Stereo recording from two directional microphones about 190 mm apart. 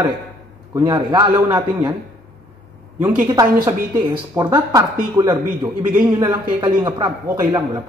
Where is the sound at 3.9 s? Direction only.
15° right (ahead or behind).